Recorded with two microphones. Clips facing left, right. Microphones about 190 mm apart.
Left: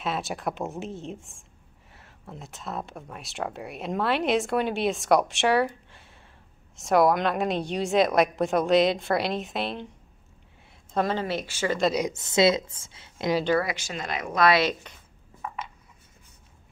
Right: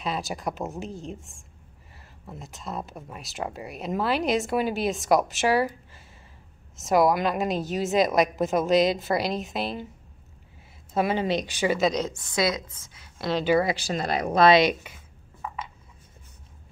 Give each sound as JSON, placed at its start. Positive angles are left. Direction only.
{"t": 0.0, "sound": "speech", "side_deg": 0}
{"t": 10.9, "sound": "speech", "side_deg": -10}
{"t": 11.8, "sound": "a woman's voice", "side_deg": 10}
{"t": 12.1, "sound": "a woman's voice", "side_deg": 25}
{"t": 13.6, "sound": "speech", "side_deg": -30}
{"t": 14.6, "sound": "speech", "side_deg": -10}